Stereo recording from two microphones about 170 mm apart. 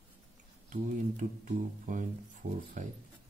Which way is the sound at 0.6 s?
50° right (ahead or behind).